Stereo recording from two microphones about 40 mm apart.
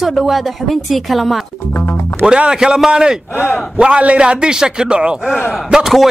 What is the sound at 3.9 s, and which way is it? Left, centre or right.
A man's voice, right.